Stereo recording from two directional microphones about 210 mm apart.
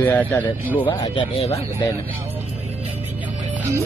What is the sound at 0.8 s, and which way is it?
Speech, 25° left (ahead or behind).